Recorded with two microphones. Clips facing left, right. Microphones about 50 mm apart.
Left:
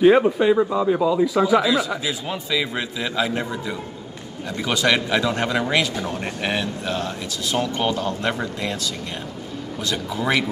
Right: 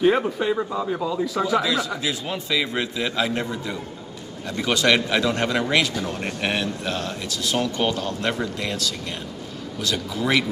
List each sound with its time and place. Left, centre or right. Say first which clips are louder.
0.0 s speech: left 5 dB; centre